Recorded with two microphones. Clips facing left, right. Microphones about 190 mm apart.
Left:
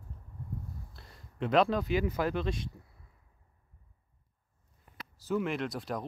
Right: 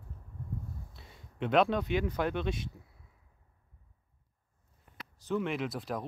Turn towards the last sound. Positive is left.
turn(degrees=0)  # may be behind; listen again after turning